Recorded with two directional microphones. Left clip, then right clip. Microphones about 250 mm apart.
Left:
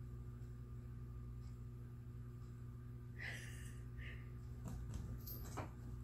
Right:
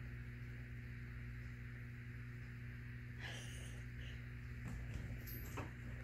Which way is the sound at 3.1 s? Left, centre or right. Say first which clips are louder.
Left 2 dB; centre.